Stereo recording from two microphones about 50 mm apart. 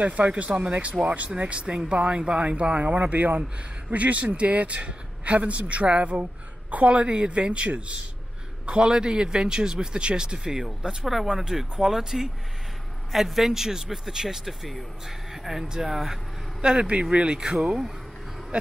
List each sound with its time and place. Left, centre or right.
0.0 s a man's voice: right
11.1 s a man's voice: centre
16.6 s a man's voice: centre